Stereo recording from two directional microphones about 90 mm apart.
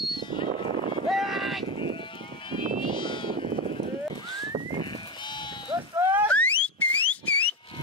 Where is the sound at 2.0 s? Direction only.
70° left (ahead or behind).